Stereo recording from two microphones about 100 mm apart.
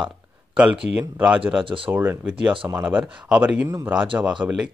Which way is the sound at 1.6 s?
60° right (ahead or behind).